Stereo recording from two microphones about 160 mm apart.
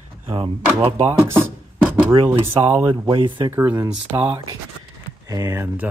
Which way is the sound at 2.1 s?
40° right (ahead or behind).